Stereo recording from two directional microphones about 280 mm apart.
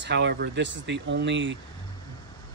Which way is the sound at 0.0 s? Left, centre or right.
Right.